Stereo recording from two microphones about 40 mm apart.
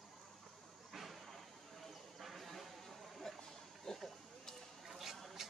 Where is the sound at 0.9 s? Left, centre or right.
Centre.